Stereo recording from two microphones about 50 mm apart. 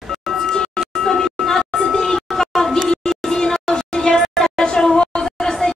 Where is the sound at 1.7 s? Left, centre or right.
Centre.